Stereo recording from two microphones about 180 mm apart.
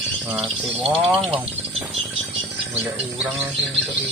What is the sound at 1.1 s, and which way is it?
Speech, 5° right (ahead or behind).